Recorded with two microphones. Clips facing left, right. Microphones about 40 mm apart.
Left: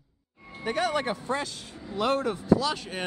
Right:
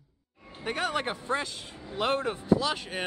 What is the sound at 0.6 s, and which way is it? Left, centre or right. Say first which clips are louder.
Speech: left 3 dB; right.